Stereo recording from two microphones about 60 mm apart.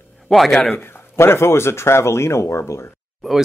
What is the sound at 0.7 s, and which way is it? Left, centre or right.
Speech, left.